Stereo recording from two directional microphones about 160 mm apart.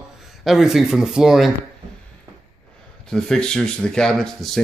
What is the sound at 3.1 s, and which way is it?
A man's voice, 5° left (ahead or behind).